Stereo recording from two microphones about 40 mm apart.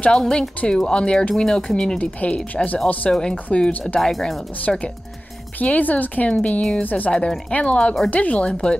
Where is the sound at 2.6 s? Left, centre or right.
Centre.